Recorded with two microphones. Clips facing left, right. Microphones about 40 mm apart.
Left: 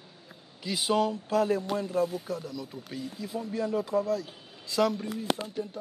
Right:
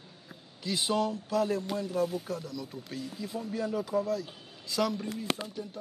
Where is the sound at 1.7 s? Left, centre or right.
Left.